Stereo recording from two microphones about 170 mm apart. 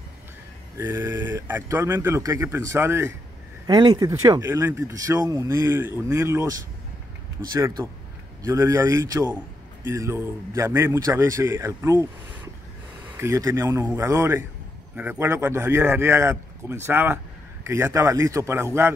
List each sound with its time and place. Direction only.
0.7 s speech: 15° right (ahead or behind)
7.5 s speech: 20° right (ahead or behind)
13.2 s speech: 20° right (ahead or behind)